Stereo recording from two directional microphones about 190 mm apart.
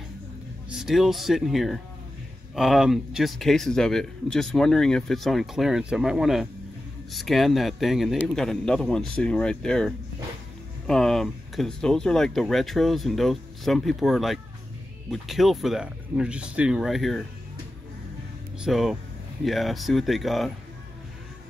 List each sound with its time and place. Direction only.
0.7 s speech: centre (ahead or behind)
18.6 s speech: centre (ahead or behind)